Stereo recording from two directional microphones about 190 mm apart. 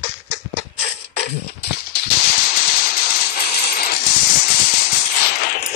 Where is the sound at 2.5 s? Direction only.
55° left (ahead or behind).